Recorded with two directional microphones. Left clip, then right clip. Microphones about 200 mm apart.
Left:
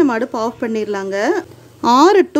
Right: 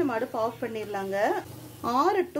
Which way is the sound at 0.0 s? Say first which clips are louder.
Left 11 dB; 50° left (ahead or behind).